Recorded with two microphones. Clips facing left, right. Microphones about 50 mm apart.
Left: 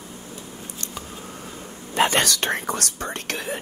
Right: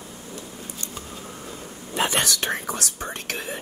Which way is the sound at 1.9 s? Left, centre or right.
Left.